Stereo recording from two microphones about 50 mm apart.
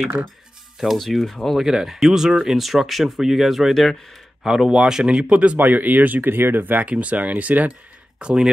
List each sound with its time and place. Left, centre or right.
0.7 s speech: centre
1.6 s speech: centre
4.5 s speech: centre
5.6 s speech: right
6.9 s speech: right
8.2 s speech: centre